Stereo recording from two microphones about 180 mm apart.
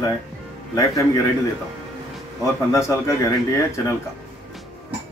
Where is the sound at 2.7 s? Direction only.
15° left (ahead or behind).